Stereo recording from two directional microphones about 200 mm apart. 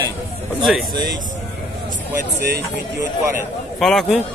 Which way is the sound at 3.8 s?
Centre (ahead or behind).